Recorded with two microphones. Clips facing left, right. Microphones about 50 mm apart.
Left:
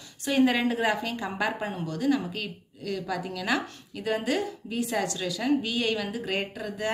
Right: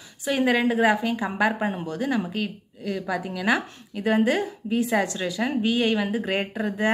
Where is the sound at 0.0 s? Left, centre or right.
Centre.